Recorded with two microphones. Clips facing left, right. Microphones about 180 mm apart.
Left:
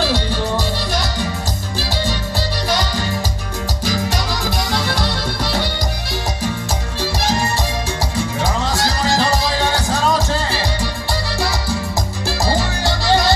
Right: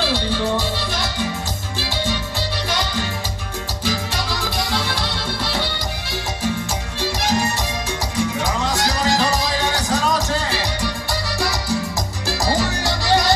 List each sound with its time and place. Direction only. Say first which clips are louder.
0.0 s music: left 1 dB; 45° left (ahead or behind)
4.7 s music: left 3 dB; 45° left (ahead or behind)
8.7 s music: even; 30° left (ahead or behind)